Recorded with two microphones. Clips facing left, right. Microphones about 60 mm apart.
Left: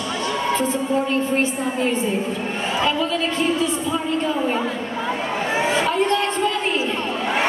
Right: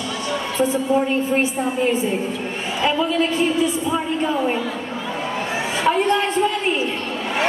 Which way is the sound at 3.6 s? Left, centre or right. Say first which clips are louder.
Right 2 dB; centre.